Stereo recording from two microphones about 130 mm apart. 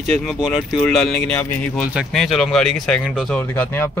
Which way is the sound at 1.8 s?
Centre (ahead or behind).